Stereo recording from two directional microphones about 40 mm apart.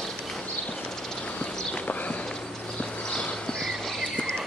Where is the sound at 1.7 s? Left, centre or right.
Left.